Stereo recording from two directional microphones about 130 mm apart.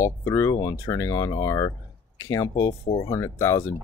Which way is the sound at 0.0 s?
20° left (ahead or behind).